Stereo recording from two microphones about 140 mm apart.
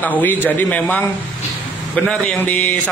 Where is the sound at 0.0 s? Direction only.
10° left (ahead or behind).